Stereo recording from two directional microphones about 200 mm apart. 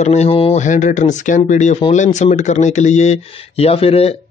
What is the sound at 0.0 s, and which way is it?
A man's voice, 35° left (ahead or behind).